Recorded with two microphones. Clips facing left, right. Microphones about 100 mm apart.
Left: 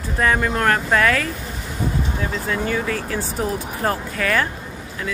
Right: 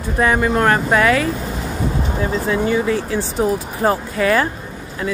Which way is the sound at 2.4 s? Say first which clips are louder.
Right 5 dB; 20° right (ahead or behind).